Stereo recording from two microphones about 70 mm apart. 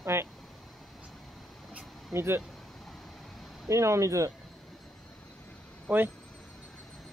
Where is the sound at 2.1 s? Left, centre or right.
Right.